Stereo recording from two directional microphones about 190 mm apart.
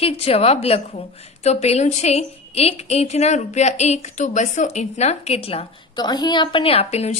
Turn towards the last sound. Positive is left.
turn(degrees=35)  # may be behind; listen again after turning